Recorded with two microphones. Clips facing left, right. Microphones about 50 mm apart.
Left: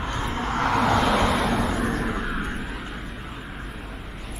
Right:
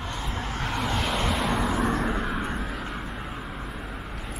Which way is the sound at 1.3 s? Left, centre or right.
Centre.